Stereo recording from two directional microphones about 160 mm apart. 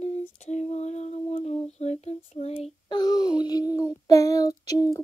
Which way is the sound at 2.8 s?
25° left (ahead or behind).